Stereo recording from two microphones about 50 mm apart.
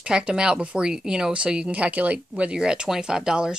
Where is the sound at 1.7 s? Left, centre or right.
Right.